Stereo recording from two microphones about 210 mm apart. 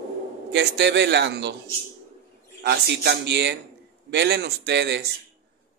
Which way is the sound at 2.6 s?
55° right (ahead or behind).